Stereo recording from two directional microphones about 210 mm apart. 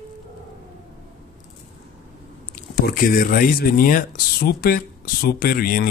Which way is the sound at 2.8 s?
40° left (ahead or behind).